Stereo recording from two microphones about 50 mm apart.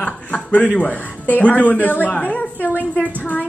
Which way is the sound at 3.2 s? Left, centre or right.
Left.